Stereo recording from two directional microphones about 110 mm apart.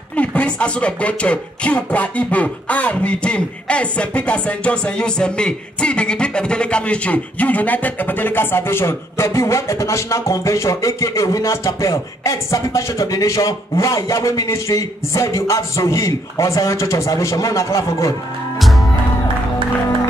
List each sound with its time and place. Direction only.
0.1 s speech: 15° left (ahead or behind)